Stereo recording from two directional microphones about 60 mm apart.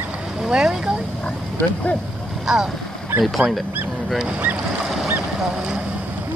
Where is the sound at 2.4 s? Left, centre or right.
Centre.